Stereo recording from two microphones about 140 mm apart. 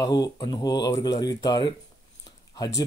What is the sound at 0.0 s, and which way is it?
Speech, 30° left (ahead or behind).